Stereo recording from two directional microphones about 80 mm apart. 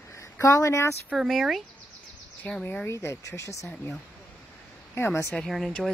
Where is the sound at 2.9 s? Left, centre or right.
Left.